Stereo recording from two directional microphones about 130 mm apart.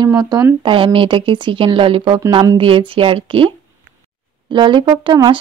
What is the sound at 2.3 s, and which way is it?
Speech, 30° right (ahead or behind).